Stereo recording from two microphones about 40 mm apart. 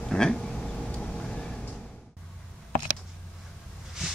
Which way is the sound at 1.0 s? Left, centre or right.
Centre.